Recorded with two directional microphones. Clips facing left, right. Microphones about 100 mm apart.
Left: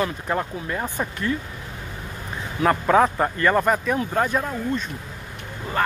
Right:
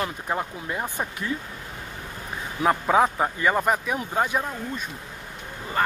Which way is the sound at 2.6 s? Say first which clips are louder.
Left 2 dB; 10° right (ahead or behind).